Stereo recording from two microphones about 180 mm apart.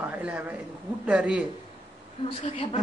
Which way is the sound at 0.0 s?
10° right (ahead or behind).